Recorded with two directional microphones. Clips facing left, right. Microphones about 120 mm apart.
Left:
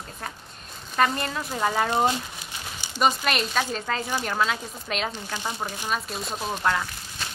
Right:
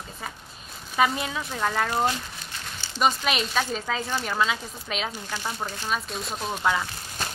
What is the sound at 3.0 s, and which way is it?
Speech, centre (ahead or behind).